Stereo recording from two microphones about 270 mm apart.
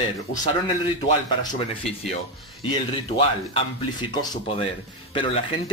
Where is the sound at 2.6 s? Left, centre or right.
Centre.